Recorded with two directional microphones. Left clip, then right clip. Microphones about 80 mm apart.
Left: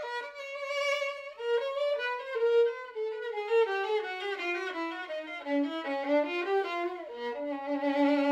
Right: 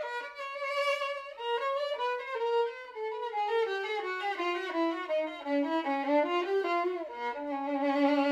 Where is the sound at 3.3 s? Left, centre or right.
Left.